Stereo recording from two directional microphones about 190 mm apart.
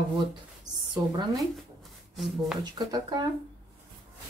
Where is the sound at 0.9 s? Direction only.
25° right (ahead or behind).